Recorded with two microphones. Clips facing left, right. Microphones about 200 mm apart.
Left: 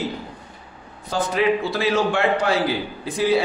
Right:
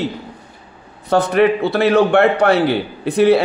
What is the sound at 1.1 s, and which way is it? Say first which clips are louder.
A man's voice: right 7 dB; 65° right (ahead or behind).